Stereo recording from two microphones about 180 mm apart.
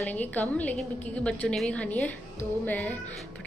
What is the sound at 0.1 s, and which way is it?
A woman's voice, 10° left (ahead or behind).